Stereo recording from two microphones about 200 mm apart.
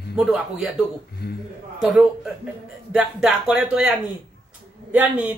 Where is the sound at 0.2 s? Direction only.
Centre (ahead or behind).